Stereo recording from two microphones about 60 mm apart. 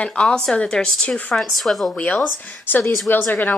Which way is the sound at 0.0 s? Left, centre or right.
Centre.